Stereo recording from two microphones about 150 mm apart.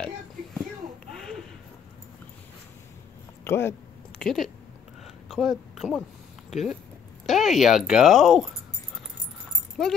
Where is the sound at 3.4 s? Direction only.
15° left (ahead or behind).